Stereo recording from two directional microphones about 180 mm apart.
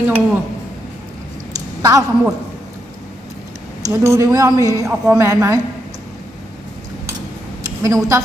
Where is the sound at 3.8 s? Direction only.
15° right (ahead or behind).